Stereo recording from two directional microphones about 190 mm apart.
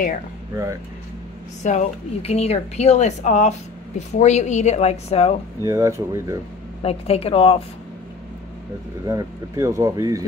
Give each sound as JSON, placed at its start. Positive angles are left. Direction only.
{"t": 1.6, "sound": "speech", "side_deg": 40}
{"t": 5.6, "sound": "speech", "side_deg": -15}
{"t": 6.8, "sound": "speech", "side_deg": 30}
{"t": 9.0, "sound": "speech", "side_deg": -20}